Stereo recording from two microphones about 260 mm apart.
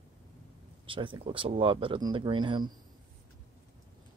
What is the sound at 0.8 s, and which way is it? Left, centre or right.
Speech, centre.